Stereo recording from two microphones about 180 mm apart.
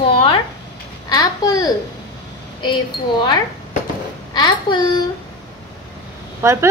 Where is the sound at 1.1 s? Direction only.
20° left (ahead or behind).